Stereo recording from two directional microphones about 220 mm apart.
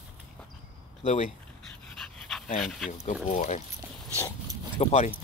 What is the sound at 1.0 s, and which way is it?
Speech, 30° left (ahead or behind).